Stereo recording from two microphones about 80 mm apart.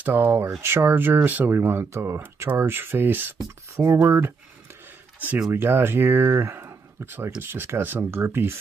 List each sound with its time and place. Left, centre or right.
0.0 s speech: right
3.7 s speech: right
5.5 s speech: right